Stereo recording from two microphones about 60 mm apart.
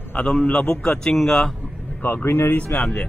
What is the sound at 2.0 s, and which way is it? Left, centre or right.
Speech, left.